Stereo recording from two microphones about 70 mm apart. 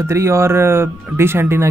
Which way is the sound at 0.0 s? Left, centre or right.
Right.